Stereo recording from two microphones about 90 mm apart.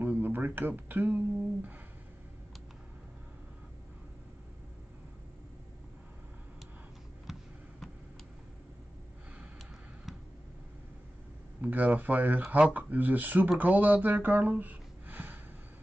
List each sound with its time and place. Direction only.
0.0 s speech: 20° right (ahead or behind)
7.3 s a sound: 5° right (ahead or behind)
11.6 s speech: 20° right (ahead or behind)